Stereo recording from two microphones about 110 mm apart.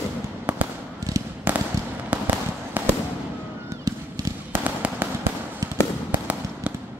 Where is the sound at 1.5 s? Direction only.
15° right (ahead or behind).